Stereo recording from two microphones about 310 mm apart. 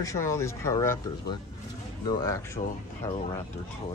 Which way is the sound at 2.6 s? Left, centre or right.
Left.